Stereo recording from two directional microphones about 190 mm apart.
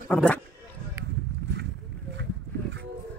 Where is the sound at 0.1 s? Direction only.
5° left (ahead or behind).